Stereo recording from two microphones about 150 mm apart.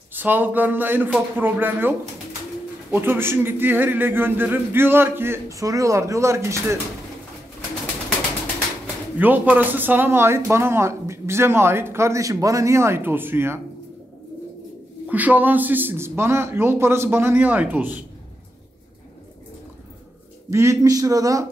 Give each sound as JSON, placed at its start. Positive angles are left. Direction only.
{"t": 0.1, "sound": "speech", "side_deg": -15}
{"t": 9.2, "sound": "speech", "side_deg": -10}
{"t": 15.0, "sound": "speech", "side_deg": -10}
{"t": 20.4, "sound": "a man's voice", "side_deg": -20}